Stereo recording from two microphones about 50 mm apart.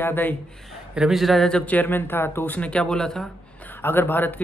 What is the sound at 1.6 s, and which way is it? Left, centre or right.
Speech, left.